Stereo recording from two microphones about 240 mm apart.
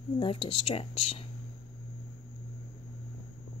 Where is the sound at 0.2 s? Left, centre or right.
Left.